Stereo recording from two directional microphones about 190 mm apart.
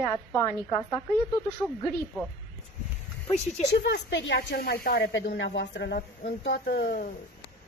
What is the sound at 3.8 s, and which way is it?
Speech, 70° left (ahead or behind).